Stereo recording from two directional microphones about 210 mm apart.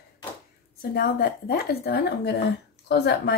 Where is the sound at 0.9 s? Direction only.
50° left (ahead or behind).